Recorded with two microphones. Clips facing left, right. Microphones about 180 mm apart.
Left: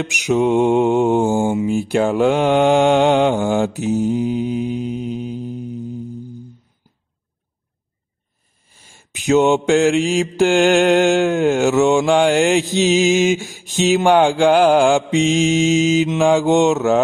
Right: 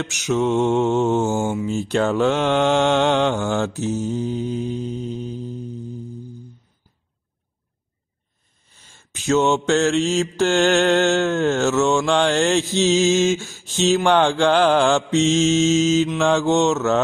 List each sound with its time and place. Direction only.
0.0 s mantra: 15° left (ahead or behind)
8.6 s mantra: 10° left (ahead or behind)